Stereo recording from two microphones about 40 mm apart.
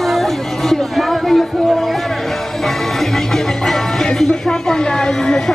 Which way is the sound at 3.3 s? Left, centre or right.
Centre.